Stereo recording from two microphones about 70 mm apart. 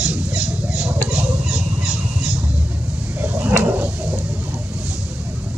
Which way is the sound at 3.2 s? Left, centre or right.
Right.